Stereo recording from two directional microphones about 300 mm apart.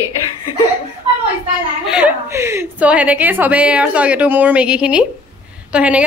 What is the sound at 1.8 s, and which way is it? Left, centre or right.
A woman's voice, centre.